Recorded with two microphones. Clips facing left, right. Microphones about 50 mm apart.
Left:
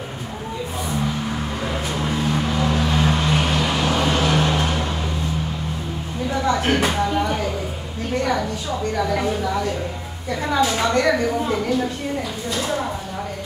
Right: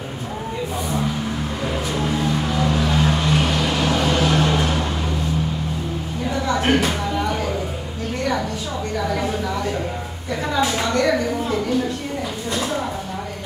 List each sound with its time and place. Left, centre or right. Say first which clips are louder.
2.0 s vehicle: left 1 dB; centre
6.5 s a sound: right 3 dB; centre
10.4 s a woman's voice: left 1 dB; centre
10.9 s a woman's voice: right 1 dB; centre